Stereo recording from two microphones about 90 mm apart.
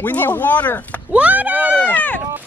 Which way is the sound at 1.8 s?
15° left (ahead or behind).